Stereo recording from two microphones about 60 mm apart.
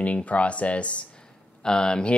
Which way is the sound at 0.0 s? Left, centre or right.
Left.